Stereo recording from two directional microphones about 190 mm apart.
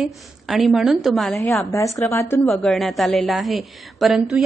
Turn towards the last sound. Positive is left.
turn(degrees=0)  # may be behind; listen again after turning